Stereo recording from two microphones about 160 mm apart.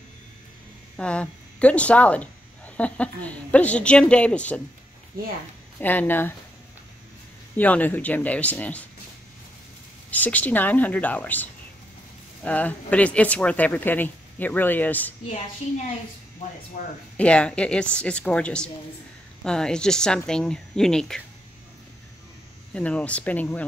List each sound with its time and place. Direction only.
0.9 s speech: 5° left (ahead or behind)
5.8 s speech: 10° left (ahead or behind)
7.5 s speech: 10° left (ahead or behind)
10.1 s speech: 10° left (ahead or behind)
12.4 s speech: 10° left (ahead or behind)
16.8 s speech: 55° left (ahead or behind)
17.2 s speech: 5° left (ahead or behind)
22.8 s speech: 10° left (ahead or behind)